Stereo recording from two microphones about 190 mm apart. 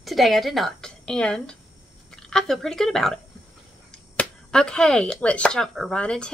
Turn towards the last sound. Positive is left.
turn(degrees=5)  # may be behind; listen again after turning